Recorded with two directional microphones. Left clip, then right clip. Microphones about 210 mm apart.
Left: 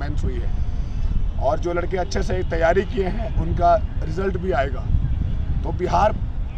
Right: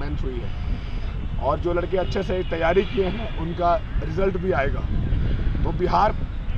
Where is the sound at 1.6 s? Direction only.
25° left (ahead or behind).